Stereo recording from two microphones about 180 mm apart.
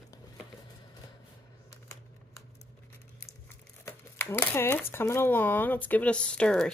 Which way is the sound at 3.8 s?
15° left (ahead or behind).